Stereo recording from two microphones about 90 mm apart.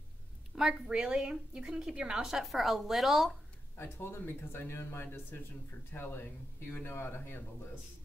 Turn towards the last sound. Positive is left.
turn(degrees=25)  # may be behind; listen again after turning